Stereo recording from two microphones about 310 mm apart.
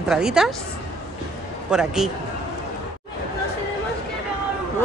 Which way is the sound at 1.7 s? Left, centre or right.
Centre.